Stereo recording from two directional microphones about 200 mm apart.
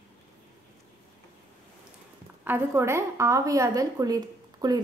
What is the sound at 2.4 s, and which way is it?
A woman's voice, 10° right (ahead or behind).